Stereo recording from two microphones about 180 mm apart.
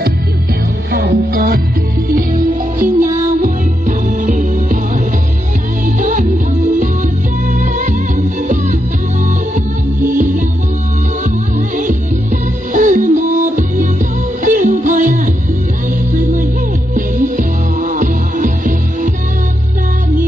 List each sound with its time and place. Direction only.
0.9 s music: 55° right (ahead or behind)
8.4 s music: 45° right (ahead or behind)
10.1 s music: 45° right (ahead or behind)
11.7 s music: 45° right (ahead or behind)